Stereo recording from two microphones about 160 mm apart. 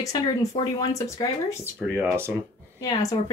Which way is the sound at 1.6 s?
10° right (ahead or behind).